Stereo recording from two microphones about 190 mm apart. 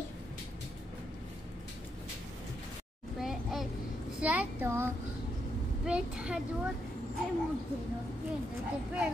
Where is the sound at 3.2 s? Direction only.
Centre (ahead or behind).